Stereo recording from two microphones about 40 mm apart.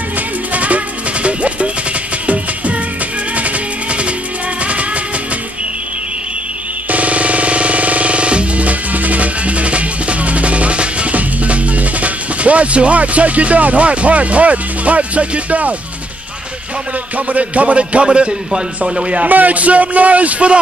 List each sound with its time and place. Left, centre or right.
0.5 s music: right
6.9 s music: right
17.3 s a man's voice: right
19.2 s a man's voice: right